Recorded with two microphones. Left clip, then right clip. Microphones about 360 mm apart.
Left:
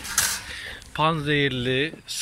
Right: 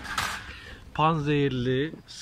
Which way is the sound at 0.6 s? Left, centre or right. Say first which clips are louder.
Left 1 dB; centre.